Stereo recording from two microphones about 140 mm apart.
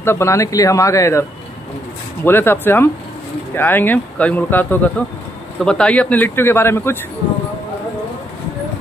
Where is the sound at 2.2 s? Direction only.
15° left (ahead or behind).